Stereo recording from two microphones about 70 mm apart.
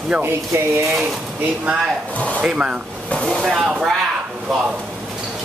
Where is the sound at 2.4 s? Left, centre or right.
Centre.